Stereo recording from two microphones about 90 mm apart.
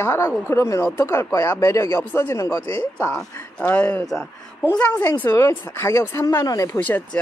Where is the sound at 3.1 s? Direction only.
15° left (ahead or behind).